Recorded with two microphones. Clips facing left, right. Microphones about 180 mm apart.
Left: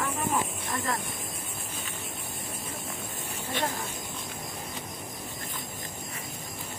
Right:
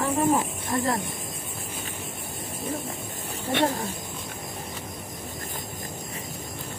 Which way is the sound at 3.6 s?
70° right (ahead or behind).